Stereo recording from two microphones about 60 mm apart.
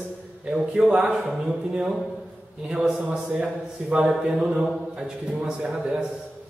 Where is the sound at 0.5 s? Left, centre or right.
Centre.